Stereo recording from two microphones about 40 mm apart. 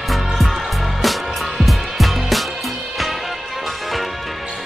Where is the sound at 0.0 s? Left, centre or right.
Centre.